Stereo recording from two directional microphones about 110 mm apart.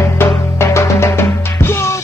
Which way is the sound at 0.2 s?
20° left (ahead or behind).